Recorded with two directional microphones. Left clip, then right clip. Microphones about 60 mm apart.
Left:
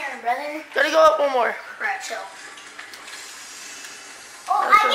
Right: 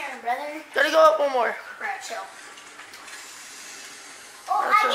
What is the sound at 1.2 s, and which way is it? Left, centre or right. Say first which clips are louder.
Speech: left 3 dB; centre.